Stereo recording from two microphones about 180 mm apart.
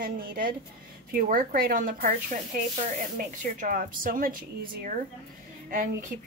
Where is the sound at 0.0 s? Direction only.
50° right (ahead or behind).